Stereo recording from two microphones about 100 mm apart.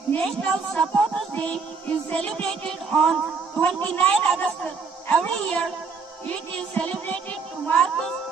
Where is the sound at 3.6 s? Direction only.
10° left (ahead or behind).